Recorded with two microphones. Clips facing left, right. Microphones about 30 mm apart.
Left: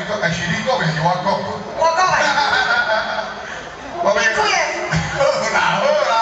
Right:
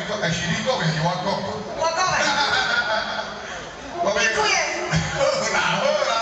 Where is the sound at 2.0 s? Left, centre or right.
Centre.